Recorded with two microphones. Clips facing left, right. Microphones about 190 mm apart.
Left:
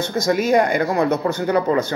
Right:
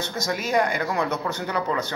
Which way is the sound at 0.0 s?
50° left (ahead or behind).